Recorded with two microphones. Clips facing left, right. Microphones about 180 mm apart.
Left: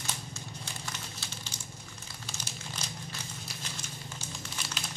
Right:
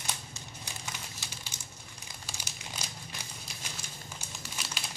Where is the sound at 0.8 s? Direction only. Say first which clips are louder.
Left 1 dB; 10° right (ahead or behind).